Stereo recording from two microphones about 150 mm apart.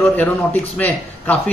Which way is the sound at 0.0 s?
10° left (ahead or behind).